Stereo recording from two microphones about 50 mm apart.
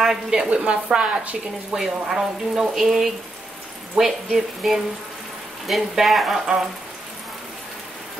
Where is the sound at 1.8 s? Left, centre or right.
Centre.